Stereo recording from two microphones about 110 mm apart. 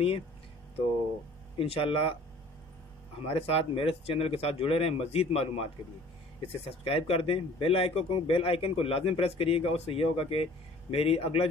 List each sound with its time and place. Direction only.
1.6 s speech: 55° left (ahead or behind)
3.2 s speech: 65° left (ahead or behind)